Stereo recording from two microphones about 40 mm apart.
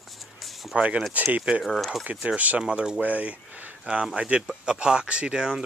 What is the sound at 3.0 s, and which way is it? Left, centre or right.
Speech, right.